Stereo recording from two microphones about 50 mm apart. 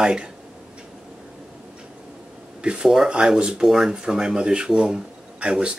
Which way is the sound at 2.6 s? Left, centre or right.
Right.